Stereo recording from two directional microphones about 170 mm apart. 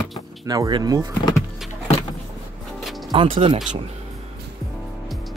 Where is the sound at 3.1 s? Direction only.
30° right (ahead or behind).